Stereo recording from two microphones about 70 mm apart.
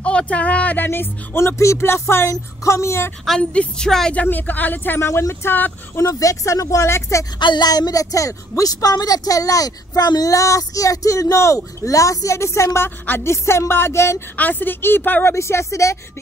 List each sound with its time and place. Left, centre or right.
0.0 s speech: centre; by 3.1 s left
3.3 s a woman's voice: centre
4.1 s speech: left
5.9 s speech: left
7.3 s a woman's voice: left
14.3 s speech: left
15.3 s speech: left